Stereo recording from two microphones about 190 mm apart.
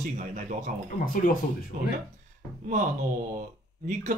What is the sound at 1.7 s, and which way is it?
Speech, 45° right (ahead or behind).